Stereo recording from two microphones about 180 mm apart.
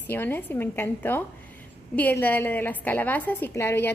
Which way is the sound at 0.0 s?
10° left (ahead or behind).